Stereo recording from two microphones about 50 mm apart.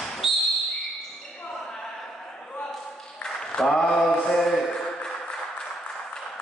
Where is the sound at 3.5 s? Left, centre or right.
Centre.